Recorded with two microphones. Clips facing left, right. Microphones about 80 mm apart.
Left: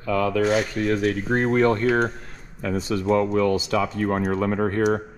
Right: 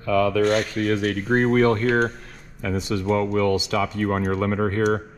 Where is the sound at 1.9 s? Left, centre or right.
Centre.